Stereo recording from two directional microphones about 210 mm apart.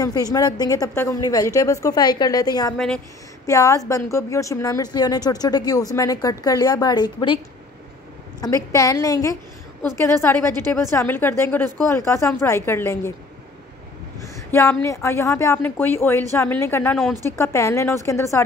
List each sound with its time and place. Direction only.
0.0 s speech: 15° left (ahead or behind)
8.4 s a woman's voice: 20° left (ahead or behind)
14.2 s speech: 15° left (ahead or behind)